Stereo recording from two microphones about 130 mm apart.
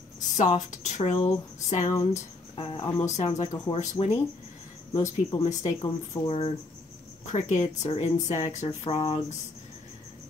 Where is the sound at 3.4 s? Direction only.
35° left (ahead or behind).